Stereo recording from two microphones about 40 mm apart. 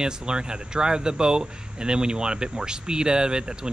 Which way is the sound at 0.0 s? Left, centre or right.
Right.